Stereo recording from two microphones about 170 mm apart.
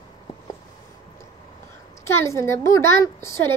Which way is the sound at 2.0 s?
15° left (ahead or behind).